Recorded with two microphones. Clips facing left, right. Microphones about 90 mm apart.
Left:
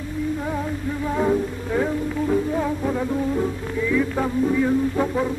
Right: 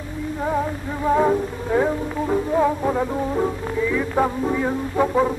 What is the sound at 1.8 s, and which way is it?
Music, 25° right (ahead or behind).